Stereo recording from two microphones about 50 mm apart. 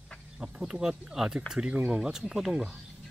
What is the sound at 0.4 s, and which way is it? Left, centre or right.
Speech, centre.